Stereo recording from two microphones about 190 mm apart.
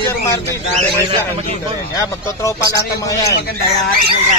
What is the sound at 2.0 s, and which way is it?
Speech, 15° left (ahead or behind).